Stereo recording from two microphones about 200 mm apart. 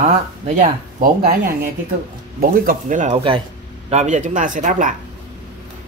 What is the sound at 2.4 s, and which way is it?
Speech, 45° right (ahead or behind).